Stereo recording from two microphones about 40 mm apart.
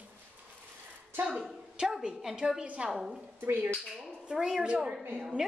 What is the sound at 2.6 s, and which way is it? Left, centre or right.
Speech, right.